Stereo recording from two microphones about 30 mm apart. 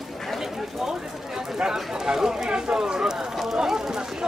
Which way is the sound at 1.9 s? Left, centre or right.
Centre.